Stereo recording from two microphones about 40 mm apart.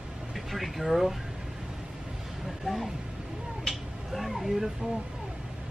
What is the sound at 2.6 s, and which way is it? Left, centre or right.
Speech, centre.